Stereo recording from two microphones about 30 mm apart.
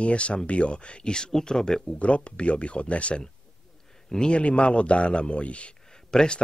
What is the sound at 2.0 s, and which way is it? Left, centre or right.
Speech, left.